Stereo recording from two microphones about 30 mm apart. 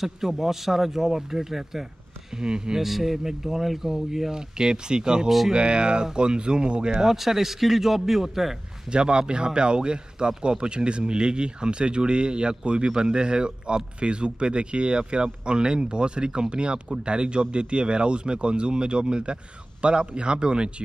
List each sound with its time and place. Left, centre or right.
0.3 s speech: centre
2.3 s speech: right
2.8 s speech: centre
4.3 s speech: right
7.1 s speech: centre
8.9 s speech: right